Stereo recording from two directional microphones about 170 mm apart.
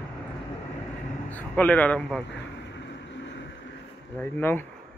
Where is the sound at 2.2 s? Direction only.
90° left.